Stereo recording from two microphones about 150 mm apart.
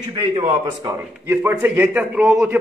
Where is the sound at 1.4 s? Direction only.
10° right (ahead or behind).